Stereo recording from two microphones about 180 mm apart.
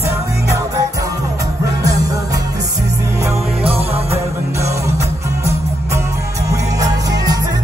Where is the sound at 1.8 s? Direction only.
20° right (ahead or behind).